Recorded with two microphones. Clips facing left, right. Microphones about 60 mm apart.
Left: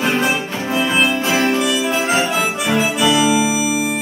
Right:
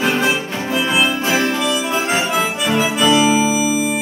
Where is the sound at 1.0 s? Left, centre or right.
Right.